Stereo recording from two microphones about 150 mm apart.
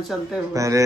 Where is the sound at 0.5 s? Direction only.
20° right (ahead or behind).